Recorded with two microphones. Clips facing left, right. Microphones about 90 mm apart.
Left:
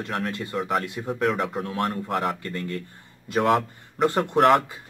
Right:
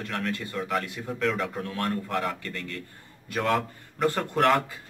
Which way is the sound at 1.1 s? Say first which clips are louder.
Left 4 dB; 10° left (ahead or behind).